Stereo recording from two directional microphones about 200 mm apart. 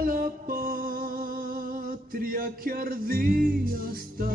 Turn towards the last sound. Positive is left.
turn(degrees=-45)  # may be behind; listen again after turning